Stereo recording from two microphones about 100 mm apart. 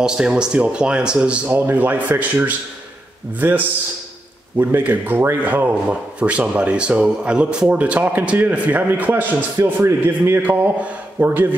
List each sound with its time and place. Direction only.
0.0 s speech: 10° right (ahead or behind)